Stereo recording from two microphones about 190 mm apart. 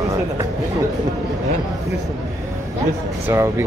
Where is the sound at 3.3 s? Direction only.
10° right (ahead or behind).